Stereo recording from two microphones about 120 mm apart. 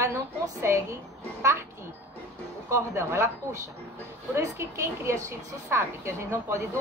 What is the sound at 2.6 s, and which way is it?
A woman's voice, 25° right (ahead or behind).